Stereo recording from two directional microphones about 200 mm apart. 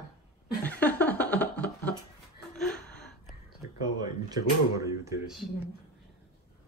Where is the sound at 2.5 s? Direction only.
5° left (ahead or behind).